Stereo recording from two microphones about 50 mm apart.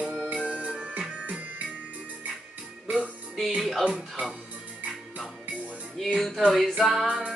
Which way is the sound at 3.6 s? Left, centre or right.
Centre.